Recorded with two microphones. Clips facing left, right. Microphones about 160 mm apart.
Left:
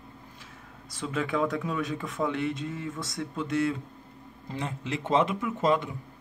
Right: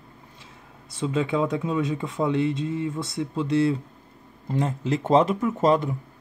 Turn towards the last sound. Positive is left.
turn(degrees=-40)  # may be behind; listen again after turning